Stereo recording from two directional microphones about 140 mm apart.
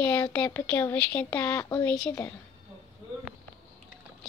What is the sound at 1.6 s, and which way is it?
Speech, 30° left (ahead or behind).